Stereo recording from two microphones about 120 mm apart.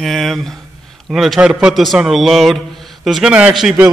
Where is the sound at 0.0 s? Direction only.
Centre (ahead or behind).